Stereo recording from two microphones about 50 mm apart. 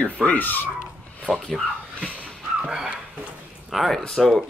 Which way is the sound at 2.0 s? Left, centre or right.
Left.